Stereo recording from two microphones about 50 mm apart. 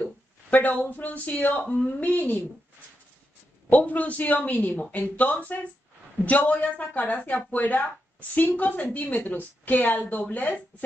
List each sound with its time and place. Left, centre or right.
0.5 s speech: left
1.7 s speech: left
2.0 s speech: left
3.7 s speech: left